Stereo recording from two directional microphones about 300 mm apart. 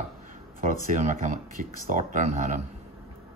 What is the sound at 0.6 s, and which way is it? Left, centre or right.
Speech, right.